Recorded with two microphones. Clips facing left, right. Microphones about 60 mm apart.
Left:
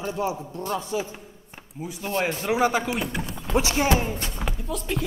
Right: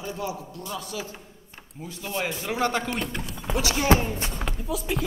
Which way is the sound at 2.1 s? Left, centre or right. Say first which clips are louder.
Left 4 dB; left.